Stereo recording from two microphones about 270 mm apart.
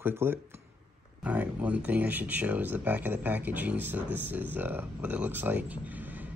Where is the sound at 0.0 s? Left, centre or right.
Centre.